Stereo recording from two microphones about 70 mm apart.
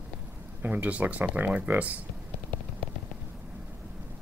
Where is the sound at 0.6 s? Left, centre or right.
Right.